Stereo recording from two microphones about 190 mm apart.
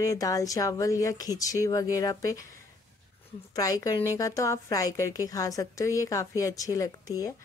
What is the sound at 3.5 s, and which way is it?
Speech, 20° left (ahead or behind).